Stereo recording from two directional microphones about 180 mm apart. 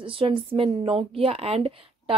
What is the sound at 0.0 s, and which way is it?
A woman's voice, 30° right (ahead or behind).